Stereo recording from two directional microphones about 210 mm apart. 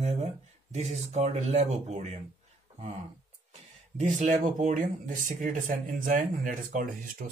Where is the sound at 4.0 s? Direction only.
35° right (ahead or behind).